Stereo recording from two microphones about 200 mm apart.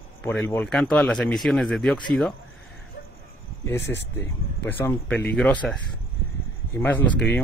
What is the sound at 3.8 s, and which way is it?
Speech, 60° left (ahead or behind).